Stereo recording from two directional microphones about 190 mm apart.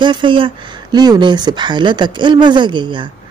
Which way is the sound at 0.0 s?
25° right (ahead or behind).